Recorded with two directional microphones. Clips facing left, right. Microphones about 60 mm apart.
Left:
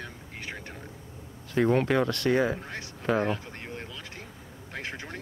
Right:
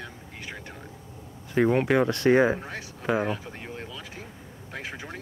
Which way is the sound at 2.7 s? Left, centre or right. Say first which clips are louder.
Right 1 dB; centre.